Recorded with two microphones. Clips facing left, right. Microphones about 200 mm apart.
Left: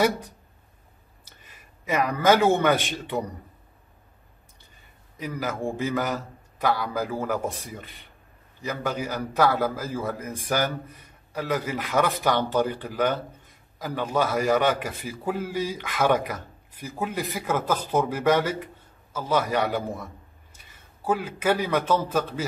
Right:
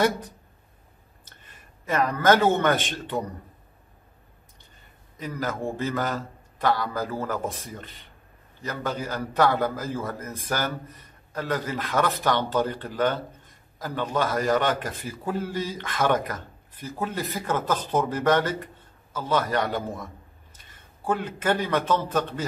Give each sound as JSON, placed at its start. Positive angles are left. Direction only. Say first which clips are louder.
{"t": 1.2, "sound": "a man's voice", "louder": "even", "side_deg": 10}
{"t": 5.2, "sound": "a man's voice", "louder": "even", "side_deg": 10}